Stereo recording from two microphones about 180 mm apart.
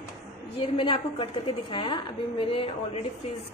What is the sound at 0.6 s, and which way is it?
A woman's voice, 30° left (ahead or behind).